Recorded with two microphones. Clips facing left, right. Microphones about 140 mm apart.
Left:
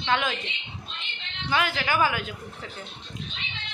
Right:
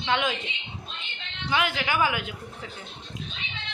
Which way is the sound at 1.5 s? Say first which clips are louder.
Left 1 dB; 15° right (ahead or behind).